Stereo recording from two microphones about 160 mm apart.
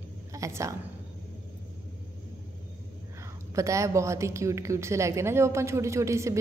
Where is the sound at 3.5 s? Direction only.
20° right (ahead or behind).